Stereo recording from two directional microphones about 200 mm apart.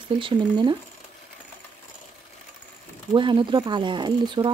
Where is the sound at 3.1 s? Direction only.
25° right (ahead or behind).